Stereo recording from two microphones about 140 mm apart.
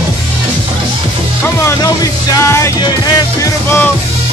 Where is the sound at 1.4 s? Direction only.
20° left (ahead or behind).